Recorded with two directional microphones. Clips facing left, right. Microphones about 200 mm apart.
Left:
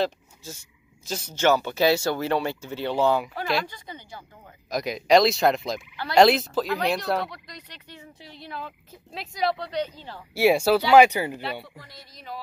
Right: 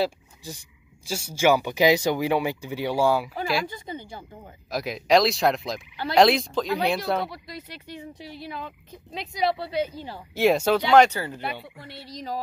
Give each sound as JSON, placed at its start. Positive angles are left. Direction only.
{"t": 0.0, "sound": "speech", "side_deg": -10}
{"t": 4.6, "sound": "speech", "side_deg": 0}
{"t": 10.3, "sound": "speech", "side_deg": 10}
{"t": 11.9, "sound": "a sound", "side_deg": -70}